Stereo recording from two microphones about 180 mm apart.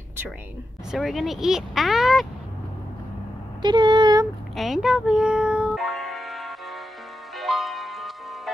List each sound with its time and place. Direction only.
0.9 s speech: centre (ahead or behind)
3.6 s speech: 25° right (ahead or behind)
4.6 s music: centre (ahead or behind)